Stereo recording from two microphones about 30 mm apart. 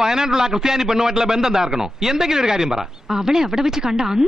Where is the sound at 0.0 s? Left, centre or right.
Centre.